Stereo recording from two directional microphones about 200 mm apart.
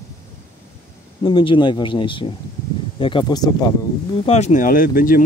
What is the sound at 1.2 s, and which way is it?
Speech, 25° left (ahead or behind).